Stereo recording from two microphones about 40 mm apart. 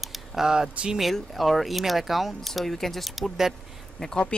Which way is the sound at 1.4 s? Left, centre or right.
Centre.